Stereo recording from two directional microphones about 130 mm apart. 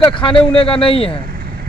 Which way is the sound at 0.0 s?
40° left (ahead or behind).